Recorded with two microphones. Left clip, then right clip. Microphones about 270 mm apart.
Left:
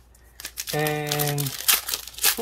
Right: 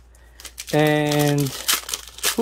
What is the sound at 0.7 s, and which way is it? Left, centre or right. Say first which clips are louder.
Speech: right 8 dB; right.